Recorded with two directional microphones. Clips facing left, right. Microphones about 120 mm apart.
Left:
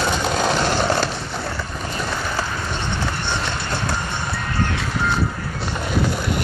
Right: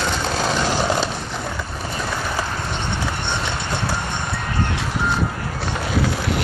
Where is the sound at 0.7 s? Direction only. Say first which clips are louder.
Left 1 dB; 10° right (ahead or behind).